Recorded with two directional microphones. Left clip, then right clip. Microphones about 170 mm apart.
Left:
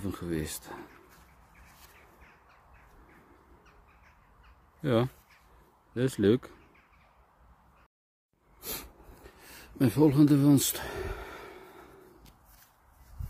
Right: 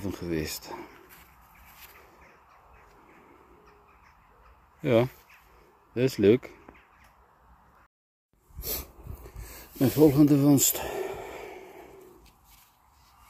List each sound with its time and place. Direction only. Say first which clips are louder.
0.0 s speech: right 3 dB; 5° left (ahead or behind)
4.8 s speech: right 5 dB; 5° left (ahead or behind)
8.5 s a sound: right 3 dB; 15° left (ahead or behind)
9.8 s speech: right 3 dB; 10° left (ahead or behind)
10.6 s speech: right 5 dB; 65° left (ahead or behind)
11.1 s a sound: right 4 dB; 10° left (ahead or behind)